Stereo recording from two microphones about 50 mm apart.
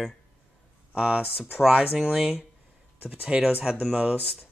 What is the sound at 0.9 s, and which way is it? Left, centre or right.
Speech, centre.